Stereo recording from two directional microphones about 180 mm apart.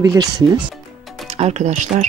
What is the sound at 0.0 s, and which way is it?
Speech, 20° right (ahead or behind).